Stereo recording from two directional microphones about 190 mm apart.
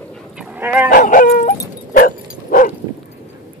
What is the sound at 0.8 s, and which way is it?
Dog, 45° left (ahead or behind).